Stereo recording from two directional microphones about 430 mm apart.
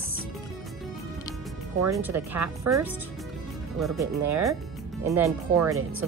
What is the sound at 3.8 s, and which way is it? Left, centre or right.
Speech, centre.